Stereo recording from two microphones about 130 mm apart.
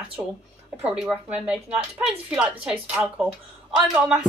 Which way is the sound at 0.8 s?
5° right (ahead or behind).